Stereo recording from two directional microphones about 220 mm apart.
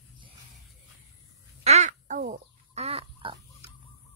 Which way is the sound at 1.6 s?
30° right (ahead or behind).